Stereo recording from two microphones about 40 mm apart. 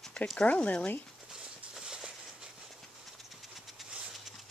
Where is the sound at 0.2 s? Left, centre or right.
Left.